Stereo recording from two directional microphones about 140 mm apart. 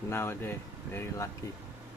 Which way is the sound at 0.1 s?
15° left (ahead or behind).